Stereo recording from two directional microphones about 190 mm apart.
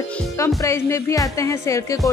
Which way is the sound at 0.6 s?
15° left (ahead or behind).